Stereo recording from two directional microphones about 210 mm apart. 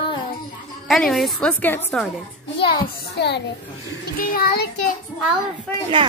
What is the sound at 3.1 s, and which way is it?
Child singing, 55° left (ahead or behind).